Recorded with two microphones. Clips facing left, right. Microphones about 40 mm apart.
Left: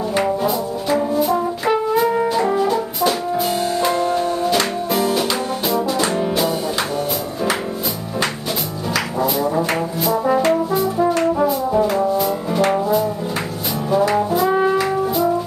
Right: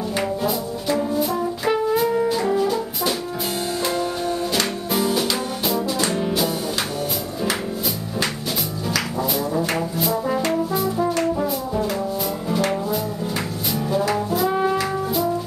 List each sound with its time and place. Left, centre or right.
0.1 s music: centre
0.8 s brass instrument: centre
2.2 s music: centre
9.2 s music: centre
10.1 s brass instrument: centre
11.1 s brass instrument: left
13.9 s brass instrument: centre